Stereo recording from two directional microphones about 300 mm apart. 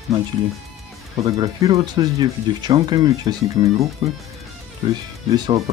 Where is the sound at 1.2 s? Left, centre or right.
Centre.